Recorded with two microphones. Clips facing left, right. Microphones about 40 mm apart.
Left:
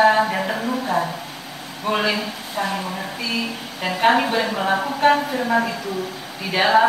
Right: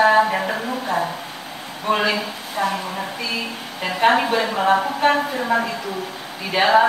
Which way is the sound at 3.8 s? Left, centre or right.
Centre.